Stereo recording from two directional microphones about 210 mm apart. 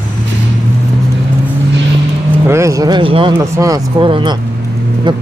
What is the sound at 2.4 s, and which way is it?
Speech, 15° right (ahead or behind).